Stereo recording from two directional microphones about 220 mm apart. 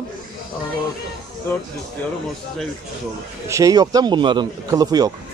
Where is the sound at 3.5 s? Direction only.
15° right (ahead or behind).